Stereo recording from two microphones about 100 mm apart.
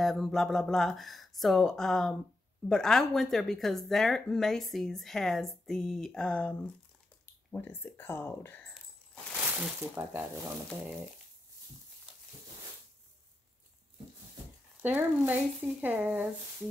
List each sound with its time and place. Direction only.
0.0 s speech: centre (ahead or behind)
7.5 s speech: 20° left (ahead or behind)
9.4 s a sound: 15° right (ahead or behind)
9.8 s speech: 20° right (ahead or behind)
14.8 s speech: 20° right (ahead or behind)